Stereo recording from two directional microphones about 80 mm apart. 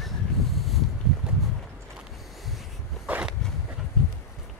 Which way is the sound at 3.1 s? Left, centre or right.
Centre.